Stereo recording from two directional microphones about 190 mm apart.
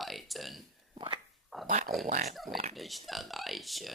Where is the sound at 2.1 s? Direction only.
45° right (ahead or behind).